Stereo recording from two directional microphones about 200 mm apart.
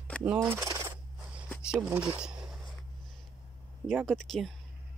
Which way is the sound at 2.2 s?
5° right (ahead or behind).